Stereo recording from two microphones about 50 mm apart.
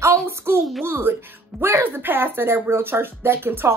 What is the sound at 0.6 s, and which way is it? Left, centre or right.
Speech, centre.